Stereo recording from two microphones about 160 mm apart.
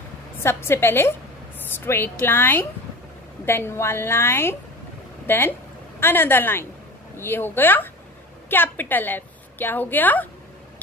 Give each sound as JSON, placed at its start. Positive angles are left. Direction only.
{"t": 0.4, "sound": "a woman's voice", "side_deg": 15}